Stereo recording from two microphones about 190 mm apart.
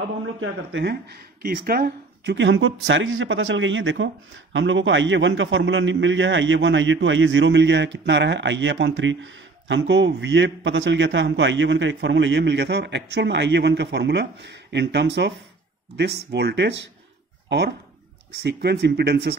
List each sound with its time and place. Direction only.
0.4 s speech: 75° right (ahead or behind)
1.4 s speech: 50° right (ahead or behind)